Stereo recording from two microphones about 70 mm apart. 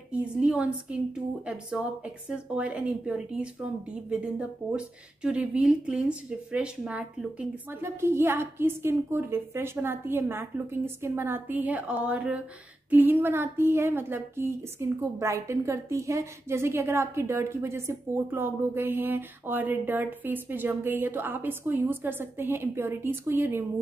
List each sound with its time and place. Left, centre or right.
0.1 s speech: centre
7.8 s a woman's voice: right; by 12.4 s centre
12.9 s a woman's voice: right